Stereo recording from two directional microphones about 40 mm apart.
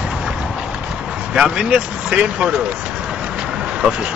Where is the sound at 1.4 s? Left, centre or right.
Right.